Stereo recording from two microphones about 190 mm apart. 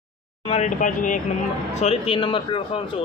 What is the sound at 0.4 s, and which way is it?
Speech, 35° left (ahead or behind).